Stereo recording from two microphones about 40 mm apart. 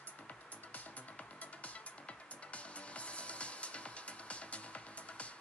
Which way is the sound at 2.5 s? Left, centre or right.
Left.